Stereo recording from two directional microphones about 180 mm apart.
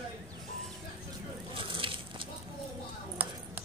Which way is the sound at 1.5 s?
30° right (ahead or behind).